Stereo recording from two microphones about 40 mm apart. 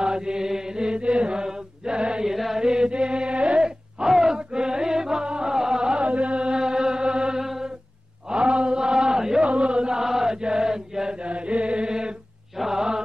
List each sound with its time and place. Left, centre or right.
0.0 s mantra: right
2.2 s mantra: centre
2.6 s mantra: centre
4.0 s a sound: centre
4.4 s music: right
7.3 s a sound: centre
8.3 s a sound: right
9.4 s chant: right
11.2 s chant: right
12.5 s mantra: centre